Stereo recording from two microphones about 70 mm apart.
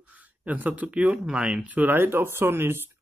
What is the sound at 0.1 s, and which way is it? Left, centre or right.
Speech, right.